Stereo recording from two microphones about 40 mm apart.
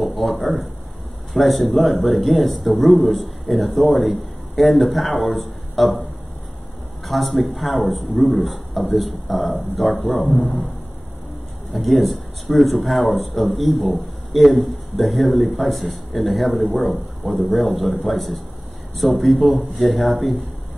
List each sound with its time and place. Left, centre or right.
0.2 s speech: centre
7.1 s speech: centre
10.0 s a man's voice: left
11.7 s a man's voice: centre